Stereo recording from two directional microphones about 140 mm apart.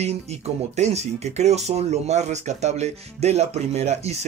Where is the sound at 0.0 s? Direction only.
50° right (ahead or behind).